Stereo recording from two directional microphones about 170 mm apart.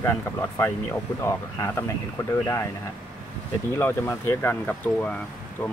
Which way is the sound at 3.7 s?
15° left (ahead or behind).